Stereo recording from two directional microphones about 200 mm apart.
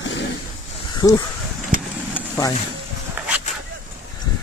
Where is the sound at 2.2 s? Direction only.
5° right (ahead or behind).